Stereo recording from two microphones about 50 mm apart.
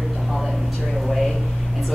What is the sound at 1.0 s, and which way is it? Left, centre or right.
Speech, centre.